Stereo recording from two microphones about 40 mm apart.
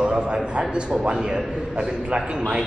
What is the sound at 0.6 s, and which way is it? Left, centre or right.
A man's voice, right.